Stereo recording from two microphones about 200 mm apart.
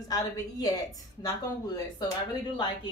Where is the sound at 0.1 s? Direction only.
20° left (ahead or behind).